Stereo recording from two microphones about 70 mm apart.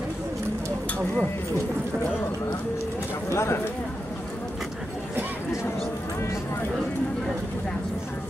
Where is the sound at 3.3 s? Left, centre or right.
Left.